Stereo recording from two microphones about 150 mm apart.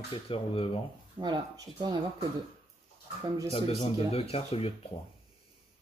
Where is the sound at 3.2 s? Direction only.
25° right (ahead or behind).